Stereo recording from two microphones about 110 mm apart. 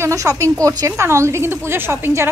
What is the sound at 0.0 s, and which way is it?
A woman's voice, 30° right (ahead or behind).